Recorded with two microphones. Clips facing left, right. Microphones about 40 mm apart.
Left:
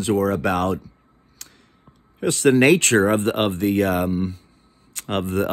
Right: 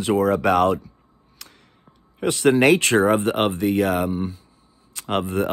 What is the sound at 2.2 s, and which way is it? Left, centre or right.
Speech, right.